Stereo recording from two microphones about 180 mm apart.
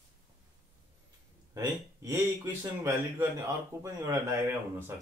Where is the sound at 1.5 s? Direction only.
20° right (ahead or behind).